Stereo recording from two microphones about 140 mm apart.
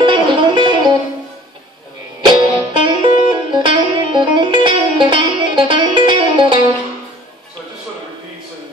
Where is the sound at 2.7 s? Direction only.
35° right (ahead or behind).